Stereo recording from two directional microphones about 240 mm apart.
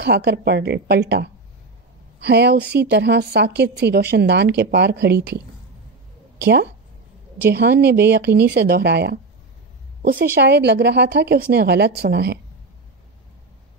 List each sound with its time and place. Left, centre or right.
0.0 s a woman's voice: right
6.4 s a woman's voice: right